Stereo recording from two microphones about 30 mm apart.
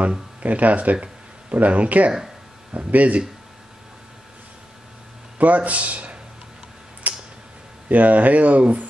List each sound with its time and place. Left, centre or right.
0.4 s speech: right
5.4 s speech: right
7.0 s tick-tock: right
7.9 s speech: right